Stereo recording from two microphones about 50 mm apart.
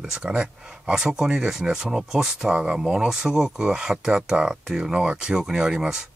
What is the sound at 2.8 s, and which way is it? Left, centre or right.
Speech, centre.